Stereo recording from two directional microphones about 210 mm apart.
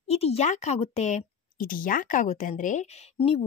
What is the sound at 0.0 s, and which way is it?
A woman's voice, 30° left (ahead or behind).